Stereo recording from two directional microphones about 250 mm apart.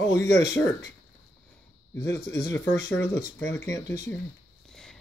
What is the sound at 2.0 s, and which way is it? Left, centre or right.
Speech, left.